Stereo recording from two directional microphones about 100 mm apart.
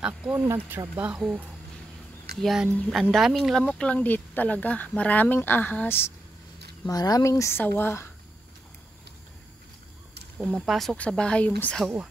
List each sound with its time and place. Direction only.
0.0 s speech: 10° right (ahead or behind)
0.5 s speech: 25° right (ahead or behind)
2.4 s speech: 5° right (ahead or behind); by 6.1 s 20° left (ahead or behind)
6.9 s speech: 40° left (ahead or behind); by 8.1 s 25° left (ahead or behind)
10.3 s speech: centre (ahead or behind)